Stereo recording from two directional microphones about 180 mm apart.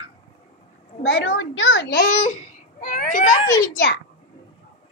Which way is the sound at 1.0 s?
90° left.